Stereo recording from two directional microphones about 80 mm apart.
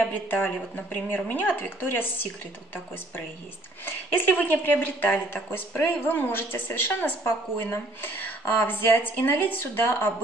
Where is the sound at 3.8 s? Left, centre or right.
Left.